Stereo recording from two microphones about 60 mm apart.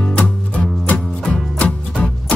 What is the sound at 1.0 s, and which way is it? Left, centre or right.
Music, centre.